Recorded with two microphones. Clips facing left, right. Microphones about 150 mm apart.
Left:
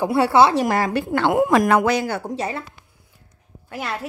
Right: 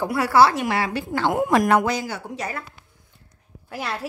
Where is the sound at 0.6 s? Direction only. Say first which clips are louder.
Left 4 dB; 45° left (ahead or behind); by 2.2 s 65° left (ahead or behind).